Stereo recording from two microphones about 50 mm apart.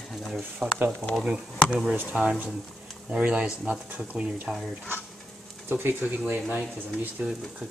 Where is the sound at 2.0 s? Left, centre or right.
Right.